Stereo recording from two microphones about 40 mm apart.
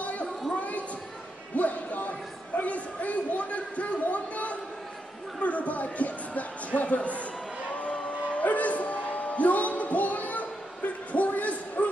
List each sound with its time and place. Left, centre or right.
0.0 s a sound: left
0.6 s speech: left
8.1 s music: left